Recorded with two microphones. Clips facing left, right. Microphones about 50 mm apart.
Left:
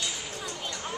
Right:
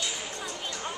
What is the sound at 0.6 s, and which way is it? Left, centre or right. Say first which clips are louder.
Music: right 1 dB; centre.